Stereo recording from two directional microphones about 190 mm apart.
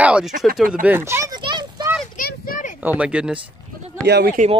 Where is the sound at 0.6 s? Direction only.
5° right (ahead or behind); by 1.8 s 20° right (ahead or behind).